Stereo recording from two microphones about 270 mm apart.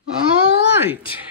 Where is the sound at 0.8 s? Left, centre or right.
Centre.